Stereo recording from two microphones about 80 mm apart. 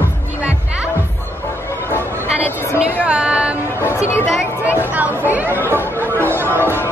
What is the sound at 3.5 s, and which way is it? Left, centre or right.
Music, left.